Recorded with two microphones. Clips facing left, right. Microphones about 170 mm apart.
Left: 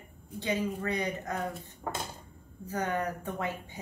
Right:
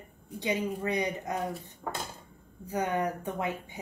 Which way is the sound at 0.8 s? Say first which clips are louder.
Right 2 dB; 15° right (ahead or behind).